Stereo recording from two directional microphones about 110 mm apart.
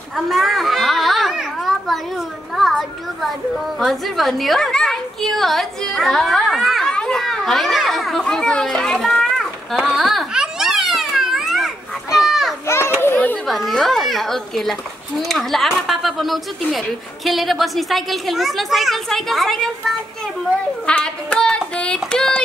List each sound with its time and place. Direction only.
0.1 s children playing: centre (ahead or behind)
3.8 s a sound: centre (ahead or behind)
12.3 s children playing: centre (ahead or behind)
12.6 s children playing: 25° left (ahead or behind)
13.5 s a child's voice: centre (ahead or behind)
20.8 s child singing: 10° left (ahead or behind)